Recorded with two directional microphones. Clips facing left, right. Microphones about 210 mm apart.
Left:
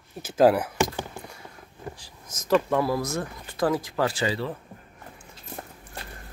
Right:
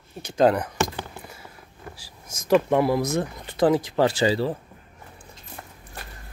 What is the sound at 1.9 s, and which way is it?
Speech, 10° right (ahead or behind).